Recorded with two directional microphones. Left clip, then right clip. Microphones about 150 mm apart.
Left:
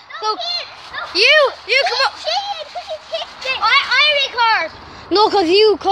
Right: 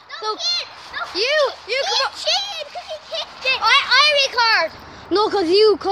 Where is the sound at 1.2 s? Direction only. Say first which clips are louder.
Left 7 dB; 15° left (ahead or behind).